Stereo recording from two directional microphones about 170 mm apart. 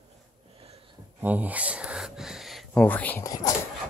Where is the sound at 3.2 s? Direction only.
20° left (ahead or behind).